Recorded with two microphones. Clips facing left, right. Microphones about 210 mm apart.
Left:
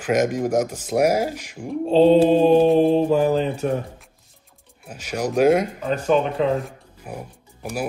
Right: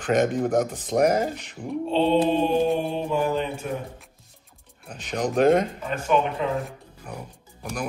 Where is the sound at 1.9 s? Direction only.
40° left (ahead or behind).